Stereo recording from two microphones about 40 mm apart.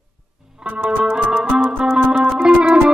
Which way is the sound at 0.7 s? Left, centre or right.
Right.